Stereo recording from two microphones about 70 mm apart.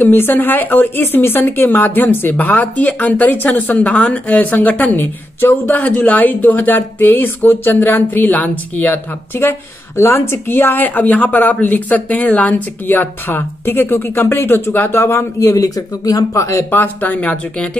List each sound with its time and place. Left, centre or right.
0.0 s speech: left
16.7 s speech: left